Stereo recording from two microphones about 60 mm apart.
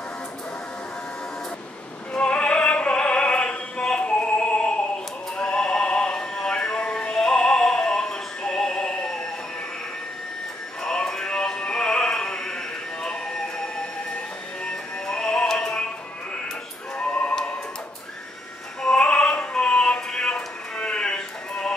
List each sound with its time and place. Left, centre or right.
2.1 s opera: centre
5.4 s music: centre
10.8 s music: centre
14.6 s music: centre
17.0 s music: left
18.8 s music: centre